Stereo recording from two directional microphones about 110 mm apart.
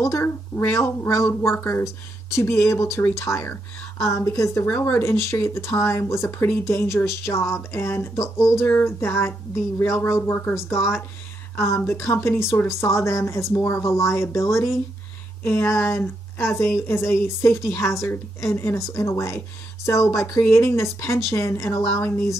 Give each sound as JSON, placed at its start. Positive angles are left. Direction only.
{"t": 0.0, "sound": "speech", "side_deg": 25}